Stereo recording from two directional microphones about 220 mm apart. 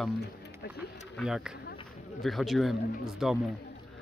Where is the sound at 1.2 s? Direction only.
Centre (ahead or behind).